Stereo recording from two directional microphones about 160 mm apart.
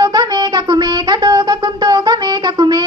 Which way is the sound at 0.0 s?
25° right (ahead or behind).